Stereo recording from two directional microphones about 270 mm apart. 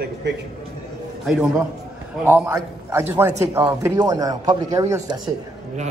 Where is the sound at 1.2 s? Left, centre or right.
Centre.